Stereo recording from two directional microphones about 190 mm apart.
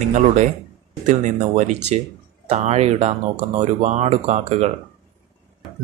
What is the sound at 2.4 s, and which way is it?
Speech, 35° right (ahead or behind).